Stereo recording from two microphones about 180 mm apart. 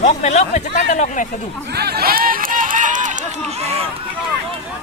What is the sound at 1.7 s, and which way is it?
Run, 60° right (ahead or behind).